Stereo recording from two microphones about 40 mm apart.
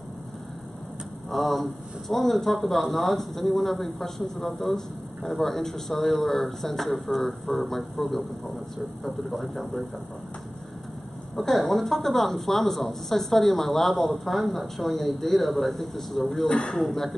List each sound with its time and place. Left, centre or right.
1.3 s a man's voice: centre
11.3 s speech: centre
16.4 s a man's voice: left
16.7 s speech: centre